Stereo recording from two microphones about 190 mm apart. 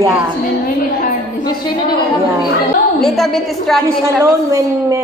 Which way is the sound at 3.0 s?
Centre (ahead or behind).